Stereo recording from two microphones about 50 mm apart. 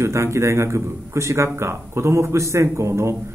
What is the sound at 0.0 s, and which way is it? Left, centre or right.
A man's voice, right.